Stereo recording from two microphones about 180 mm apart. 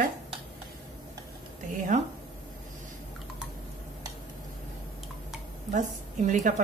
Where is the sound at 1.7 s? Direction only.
45° right (ahead or behind).